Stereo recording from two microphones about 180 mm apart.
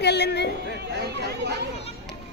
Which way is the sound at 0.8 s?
70° right (ahead or behind).